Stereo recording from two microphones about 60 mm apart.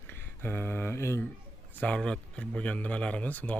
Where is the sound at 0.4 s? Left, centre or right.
Left.